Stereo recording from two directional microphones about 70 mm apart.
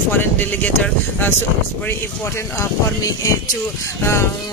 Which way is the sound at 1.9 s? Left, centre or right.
Left.